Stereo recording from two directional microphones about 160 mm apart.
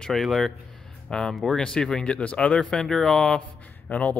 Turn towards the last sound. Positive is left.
turn(degrees=10)  # may be behind; listen again after turning